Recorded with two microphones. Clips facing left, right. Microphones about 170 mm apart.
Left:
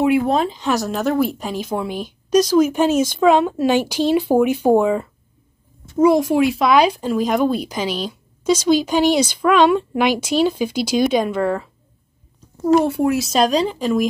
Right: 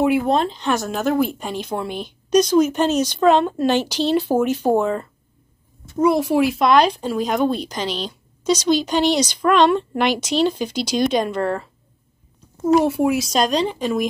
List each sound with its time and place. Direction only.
0.0 s speech: centre (ahead or behind)